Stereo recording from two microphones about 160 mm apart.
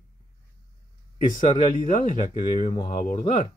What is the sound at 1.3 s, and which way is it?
Speech, 55° left (ahead or behind).